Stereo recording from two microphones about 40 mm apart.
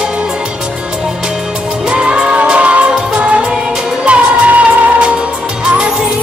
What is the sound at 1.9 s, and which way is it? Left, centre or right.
Music, right.